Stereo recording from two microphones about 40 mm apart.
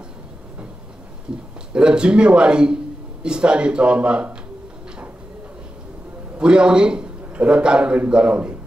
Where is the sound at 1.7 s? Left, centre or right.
Right.